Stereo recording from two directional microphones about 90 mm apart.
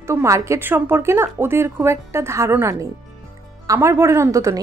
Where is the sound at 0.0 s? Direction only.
30° right (ahead or behind).